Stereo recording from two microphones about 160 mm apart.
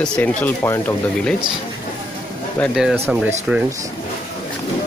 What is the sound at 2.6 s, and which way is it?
Speech, 10° left (ahead or behind).